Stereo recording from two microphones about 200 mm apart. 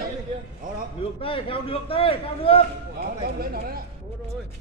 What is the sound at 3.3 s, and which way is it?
Speech, 50° right (ahead or behind).